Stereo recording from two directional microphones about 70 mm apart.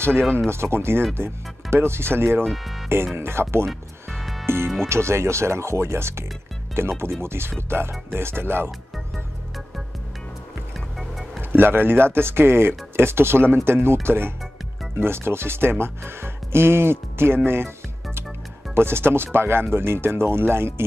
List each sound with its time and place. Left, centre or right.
0.5 s speech: right
2.4 s speech: centre
3.2 s speech: right
3.6 s music: centre
4.5 s speech: right
11.0 s music: centre
11.5 s speech: right
18.8 s speech: right